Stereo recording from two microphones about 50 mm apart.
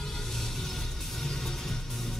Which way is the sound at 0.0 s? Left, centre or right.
Centre.